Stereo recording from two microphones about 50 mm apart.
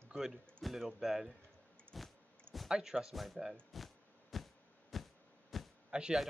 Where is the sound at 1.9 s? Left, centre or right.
Centre.